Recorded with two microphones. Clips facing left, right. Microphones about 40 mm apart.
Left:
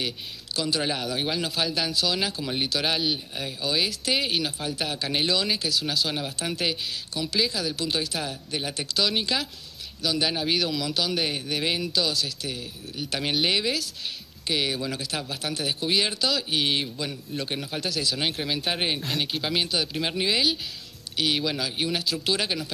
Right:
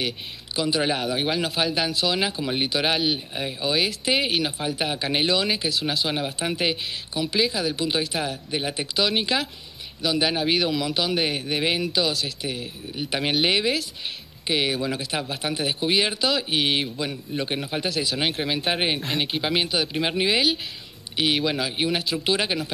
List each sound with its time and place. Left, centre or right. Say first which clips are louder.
0.6 s speech: right 4 dB; centre